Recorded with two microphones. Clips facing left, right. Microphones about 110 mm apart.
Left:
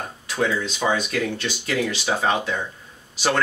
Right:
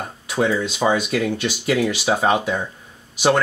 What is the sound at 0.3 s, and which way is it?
Speech, 10° right (ahead or behind).